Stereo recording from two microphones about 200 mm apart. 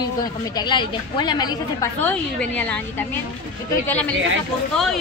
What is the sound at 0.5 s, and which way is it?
A woman's voice, 25° left (ahead or behind).